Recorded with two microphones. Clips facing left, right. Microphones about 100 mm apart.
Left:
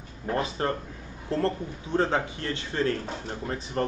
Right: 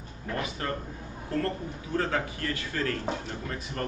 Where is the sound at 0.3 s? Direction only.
30° left (ahead or behind).